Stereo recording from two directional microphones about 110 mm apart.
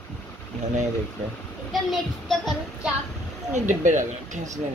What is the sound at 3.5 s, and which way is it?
Speech, 90° right.